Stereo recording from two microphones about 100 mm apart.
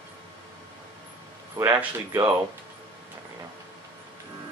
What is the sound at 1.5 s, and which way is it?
Speech, 25° right (ahead or behind).